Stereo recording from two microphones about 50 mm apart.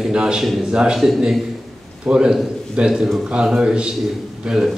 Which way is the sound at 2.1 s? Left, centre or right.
Centre.